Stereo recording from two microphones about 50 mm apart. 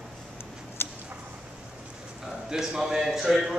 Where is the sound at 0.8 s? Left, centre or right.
Left.